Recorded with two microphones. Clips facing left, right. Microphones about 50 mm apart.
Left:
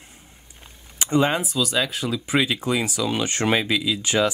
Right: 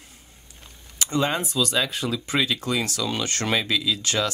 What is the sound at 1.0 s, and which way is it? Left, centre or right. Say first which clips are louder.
Speech: left 4 dB; left.